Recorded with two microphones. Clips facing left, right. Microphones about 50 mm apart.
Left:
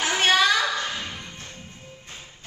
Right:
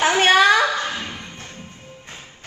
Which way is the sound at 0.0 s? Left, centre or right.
Right.